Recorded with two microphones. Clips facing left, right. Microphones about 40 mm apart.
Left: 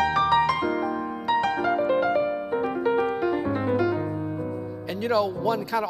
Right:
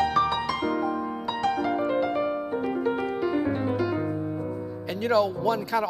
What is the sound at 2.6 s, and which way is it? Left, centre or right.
Piano, centre.